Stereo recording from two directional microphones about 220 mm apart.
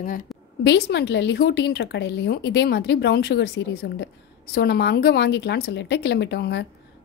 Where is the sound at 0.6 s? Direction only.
50° left (ahead or behind).